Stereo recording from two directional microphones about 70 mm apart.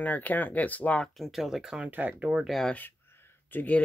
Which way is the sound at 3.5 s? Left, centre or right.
Left.